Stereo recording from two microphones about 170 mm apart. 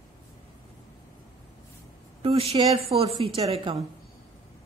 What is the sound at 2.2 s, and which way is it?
A woman's voice, 35° right (ahead or behind).